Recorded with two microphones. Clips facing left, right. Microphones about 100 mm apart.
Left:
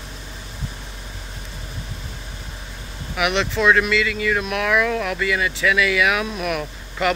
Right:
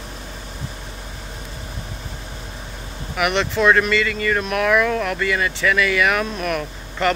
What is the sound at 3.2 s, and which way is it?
Speech, centre (ahead or behind).